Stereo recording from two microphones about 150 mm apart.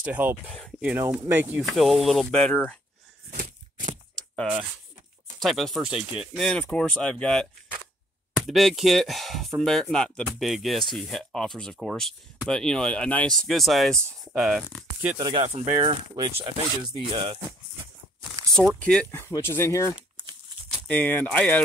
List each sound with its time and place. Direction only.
0.0 s speech: 10° right (ahead or behind)
0.5 s speech: 5° left (ahead or behind)
0.7 s speech: 10° right (ahead or behind)
1.6 s speech: centre (ahead or behind)
3.3 s a sound: 60° right (ahead or behind)
5.4 s speech: centre (ahead or behind)
15.1 s speech: 30° right (ahead or behind)
15.4 s speech: 50° right (ahead or behind)
15.8 s speech: 35° right (ahead or behind)
18.5 s speech: 5° left (ahead or behind)
20.7 s speech: 5° left (ahead or behind)